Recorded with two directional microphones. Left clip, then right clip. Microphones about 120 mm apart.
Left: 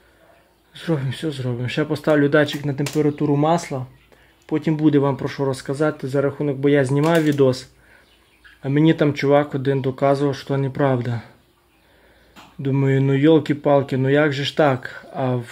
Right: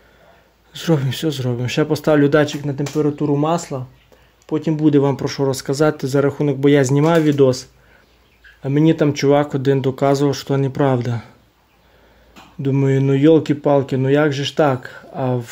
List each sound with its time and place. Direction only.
0.7 s speech: 35° right (ahead or behind)
2.6 s speech: 5° left (ahead or behind)
4.8 s speech: 15° right (ahead or behind)
8.6 s speech: 5° right (ahead or behind)
12.6 s speech: 10° right (ahead or behind)